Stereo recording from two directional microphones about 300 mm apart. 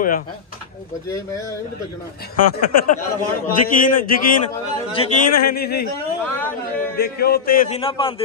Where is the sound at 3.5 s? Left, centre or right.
Left.